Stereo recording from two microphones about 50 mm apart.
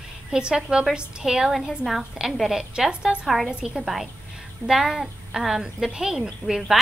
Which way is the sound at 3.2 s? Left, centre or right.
Centre.